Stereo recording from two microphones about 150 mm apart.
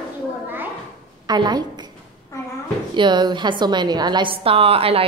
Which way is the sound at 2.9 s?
30° right (ahead or behind).